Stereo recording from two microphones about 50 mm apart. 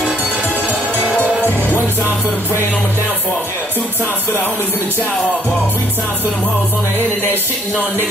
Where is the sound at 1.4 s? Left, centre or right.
Left.